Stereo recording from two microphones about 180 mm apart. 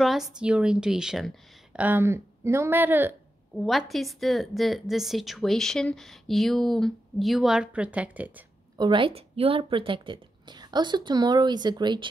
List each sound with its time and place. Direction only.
0.0 s a woman's voice: centre (ahead or behind)
3.5 s a woman's voice: centre (ahead or behind)
8.7 s a woman's voice: 25° right (ahead or behind)